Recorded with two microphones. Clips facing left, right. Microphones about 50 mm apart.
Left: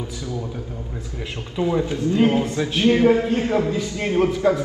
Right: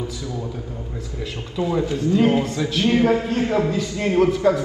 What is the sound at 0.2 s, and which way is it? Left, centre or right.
Speech, right.